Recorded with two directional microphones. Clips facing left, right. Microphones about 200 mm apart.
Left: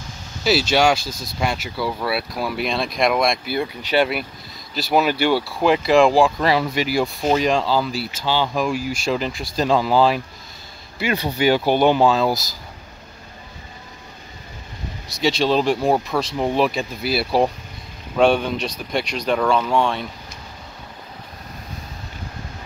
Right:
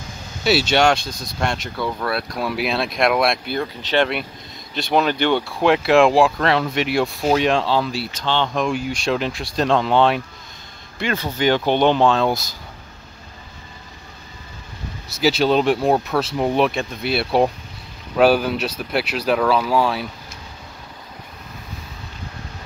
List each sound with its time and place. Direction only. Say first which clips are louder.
0.4 s speech: right 1 dB; centre (ahead or behind)
3.5 s speech: even; 10° left (ahead or behind)
11.0 s speech: left 1 dB; 10° left (ahead or behind)
15.0 s speech: right 2 dB; 5° right (ahead or behind)